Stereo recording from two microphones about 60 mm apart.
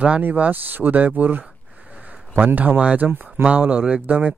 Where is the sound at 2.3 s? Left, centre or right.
Right.